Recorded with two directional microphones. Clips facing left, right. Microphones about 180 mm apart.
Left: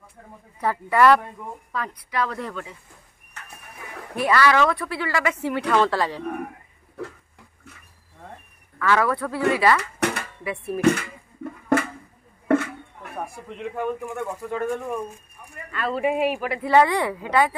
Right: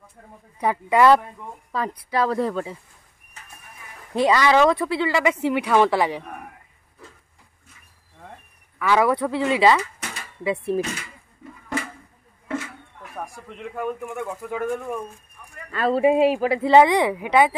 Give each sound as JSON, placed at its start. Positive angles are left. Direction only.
{"t": 0.6, "sound": "a man's voice", "side_deg": -15}
{"t": 1.7, "sound": "a woman's voice", "side_deg": -30}
{"t": 4.1, "sound": "speech", "side_deg": -20}
{"t": 7.0, "sound": "a sound", "side_deg": 70}
{"t": 8.7, "sound": "a man's voice", "side_deg": -15}
{"t": 9.8, "sound": "a sound", "side_deg": 65}
{"t": 13.2, "sound": "speech", "side_deg": 5}
{"t": 15.7, "sound": "speech", "side_deg": -35}